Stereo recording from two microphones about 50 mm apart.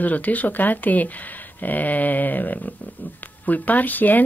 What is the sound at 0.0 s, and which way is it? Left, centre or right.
Speech, left.